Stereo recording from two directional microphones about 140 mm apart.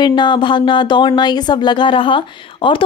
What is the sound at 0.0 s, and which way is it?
Speech, 30° left (ahead or behind).